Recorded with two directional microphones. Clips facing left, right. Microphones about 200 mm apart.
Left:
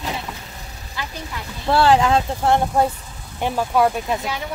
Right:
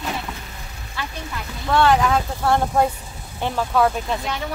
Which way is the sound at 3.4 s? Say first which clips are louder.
Left 1 dB; 10° left (ahead or behind).